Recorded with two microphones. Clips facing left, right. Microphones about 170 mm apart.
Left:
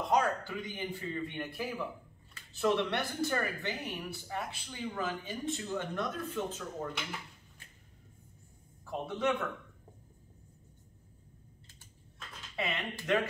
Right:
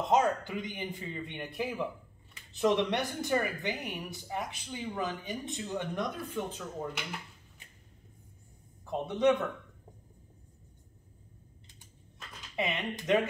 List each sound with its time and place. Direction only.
0.0 s a man's voice: 25° right (ahead or behind)
8.8 s a man's voice: 20° right (ahead or behind)
12.5 s a man's voice: 20° right (ahead or behind)